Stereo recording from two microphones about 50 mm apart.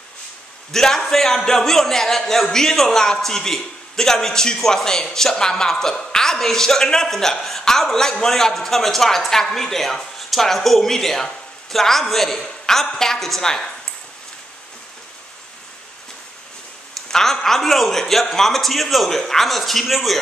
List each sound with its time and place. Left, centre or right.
0.7 s speech: centre
17.1 s a man's voice: centre